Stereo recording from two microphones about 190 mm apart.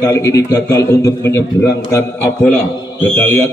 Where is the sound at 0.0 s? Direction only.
15° left (ahead or behind).